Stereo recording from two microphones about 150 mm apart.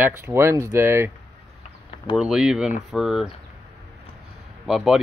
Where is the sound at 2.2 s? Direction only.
5° right (ahead or behind).